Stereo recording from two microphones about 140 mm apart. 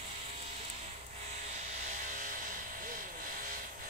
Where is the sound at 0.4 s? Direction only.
50° right (ahead or behind).